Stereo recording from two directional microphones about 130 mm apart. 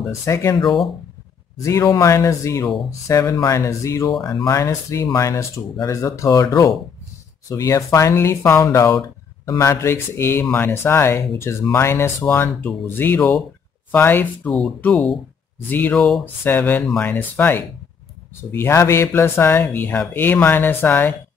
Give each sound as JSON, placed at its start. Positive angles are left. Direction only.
{"t": 0.2, "sound": "speech", "side_deg": 25}
{"t": 1.6, "sound": "speech", "side_deg": 25}